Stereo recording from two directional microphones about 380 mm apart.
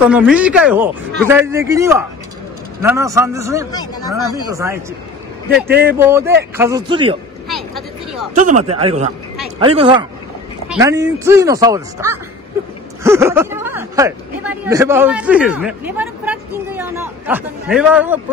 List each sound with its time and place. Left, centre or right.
0.1 s speech: centre
5.9 s speech: centre
7.4 s vehicle: centre
8.4 s speech: centre